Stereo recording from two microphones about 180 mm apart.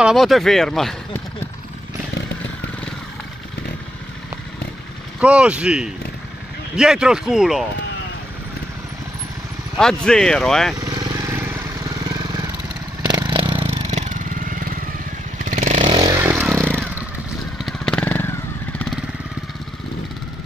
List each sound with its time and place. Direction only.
0.0 s speech: centre (ahead or behind)
5.2 s speech: 5° right (ahead or behind)
9.8 s speech: 5° left (ahead or behind)
10.8 s vehicle: 20° right (ahead or behind)
12.0 s lawn mower: 20° right (ahead or behind)
13.1 s vehicle: 25° right (ahead or behind); by 14.7 s 50° right (ahead or behind)
15.4 s motorcycle: 45° right (ahead or behind)
15.8 s vehicle: 25° right (ahead or behind)
16.8 s motorcycle: 10° right (ahead or behind)
17.6 s vehicle: 5° left (ahead or behind)